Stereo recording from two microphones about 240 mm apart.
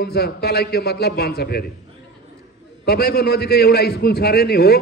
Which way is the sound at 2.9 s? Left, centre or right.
Left.